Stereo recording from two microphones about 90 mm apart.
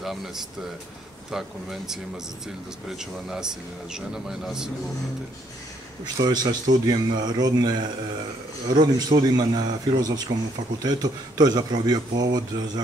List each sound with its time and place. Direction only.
0.0 s speech: 5° right (ahead or behind)
6.1 s speech: 45° right (ahead or behind)